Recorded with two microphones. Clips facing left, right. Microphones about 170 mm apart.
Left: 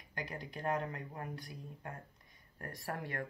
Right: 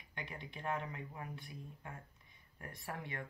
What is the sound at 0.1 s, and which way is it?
Speech, 40° left (ahead or behind).